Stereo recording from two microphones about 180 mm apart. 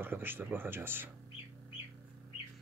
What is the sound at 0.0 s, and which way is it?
Speech, 10° right (ahead or behind).